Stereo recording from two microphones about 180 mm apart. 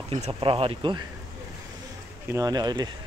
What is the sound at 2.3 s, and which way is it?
Speech, 20° right (ahead or behind).